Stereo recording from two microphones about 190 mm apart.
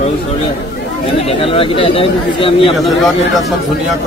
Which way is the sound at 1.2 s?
30° left (ahead or behind).